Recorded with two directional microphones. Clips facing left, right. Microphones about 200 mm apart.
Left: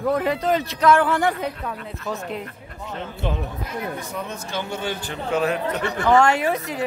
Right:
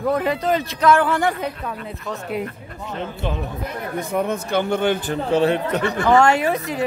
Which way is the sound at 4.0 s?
55° right (ahead or behind).